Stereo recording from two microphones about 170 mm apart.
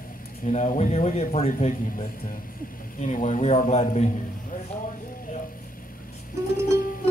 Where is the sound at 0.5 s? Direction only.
40° left (ahead or behind).